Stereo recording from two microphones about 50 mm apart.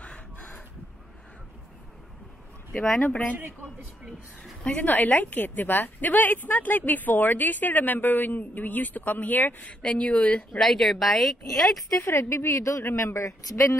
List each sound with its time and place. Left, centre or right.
0.0 s a sound: left
3.1 s speech: left
4.7 s a woman's voice: left
9.7 s speech: left
10.6 s speech: centre
12.0 s speech: left